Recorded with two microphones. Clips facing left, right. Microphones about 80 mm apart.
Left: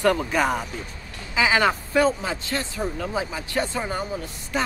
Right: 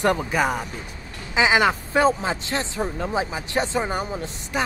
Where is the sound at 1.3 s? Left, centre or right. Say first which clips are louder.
Right 2 dB; centre.